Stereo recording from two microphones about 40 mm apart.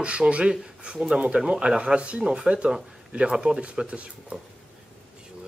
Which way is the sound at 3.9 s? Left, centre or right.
Right.